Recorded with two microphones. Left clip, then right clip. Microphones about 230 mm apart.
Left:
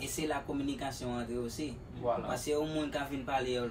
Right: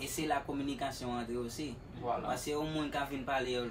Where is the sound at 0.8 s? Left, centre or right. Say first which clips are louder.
Even; centre.